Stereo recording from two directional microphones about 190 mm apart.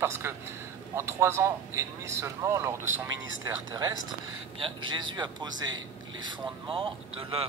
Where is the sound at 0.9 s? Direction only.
15° right (ahead or behind).